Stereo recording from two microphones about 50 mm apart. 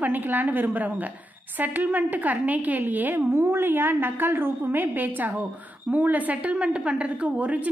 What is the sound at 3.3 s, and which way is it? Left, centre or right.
A woman's voice, right.